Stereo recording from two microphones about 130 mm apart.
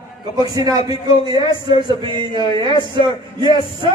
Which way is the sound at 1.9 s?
40° right (ahead or behind).